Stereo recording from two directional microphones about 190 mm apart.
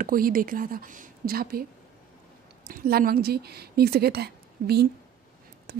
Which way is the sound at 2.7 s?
50° right (ahead or behind).